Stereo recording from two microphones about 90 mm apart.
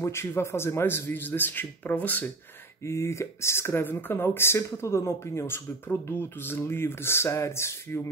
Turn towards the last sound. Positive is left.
turn(degrees=30)  # may be behind; listen again after turning